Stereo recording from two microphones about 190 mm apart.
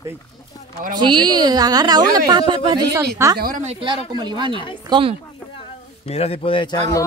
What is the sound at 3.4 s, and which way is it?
Speech, 45° right (ahead or behind).